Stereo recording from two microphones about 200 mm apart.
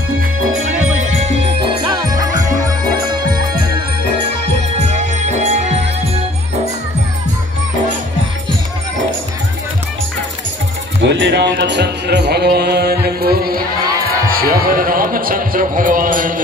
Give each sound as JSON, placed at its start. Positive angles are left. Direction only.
{"t": 0.5, "sound": "music", "side_deg": -80}
{"t": 1.6, "sound": "music", "side_deg": -20}
{"t": 4.7, "sound": "music", "side_deg": -35}
{"t": 11.0, "sound": "speech", "side_deg": -60}
{"t": 14.2, "sound": "a sound", "side_deg": -45}